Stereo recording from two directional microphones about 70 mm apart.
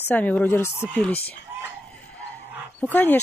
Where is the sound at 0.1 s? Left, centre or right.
Left.